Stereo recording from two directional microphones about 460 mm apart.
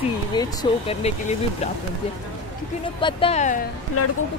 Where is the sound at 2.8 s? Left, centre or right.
Centre.